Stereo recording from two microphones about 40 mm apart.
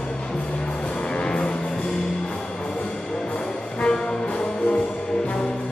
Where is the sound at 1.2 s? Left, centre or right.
Left.